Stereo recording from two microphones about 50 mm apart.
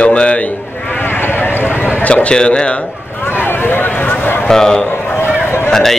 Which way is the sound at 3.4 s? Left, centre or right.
Left.